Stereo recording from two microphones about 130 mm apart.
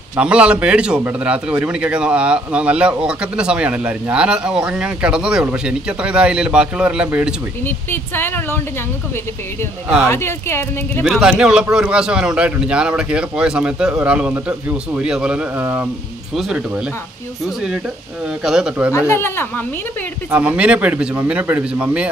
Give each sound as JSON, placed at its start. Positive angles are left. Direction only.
{"t": 0.2, "sound": "speech", "side_deg": -10}
{"t": 7.6, "sound": "speech", "side_deg": 15}
{"t": 10.0, "sound": "speech", "side_deg": 20}
{"t": 11.1, "sound": "speech", "side_deg": -5}
{"t": 18.4, "sound": "speech", "side_deg": -5}
{"t": 18.9, "sound": "speech", "side_deg": 20}
{"t": 20.2, "sound": "speech", "side_deg": -10}